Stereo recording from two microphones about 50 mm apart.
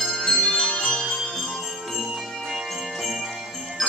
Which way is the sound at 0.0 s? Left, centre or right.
Centre.